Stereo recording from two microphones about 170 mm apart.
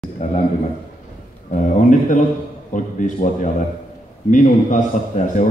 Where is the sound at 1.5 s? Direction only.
50° left (ahead or behind).